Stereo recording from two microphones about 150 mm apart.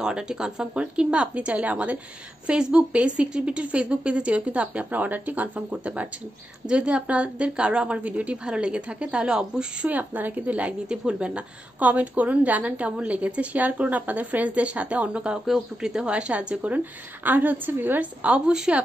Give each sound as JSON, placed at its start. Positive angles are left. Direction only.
{"t": 0.0, "sound": "a woman's voice", "side_deg": -5}